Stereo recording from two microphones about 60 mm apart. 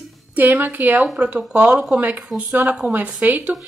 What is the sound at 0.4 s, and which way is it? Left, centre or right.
Speech, right.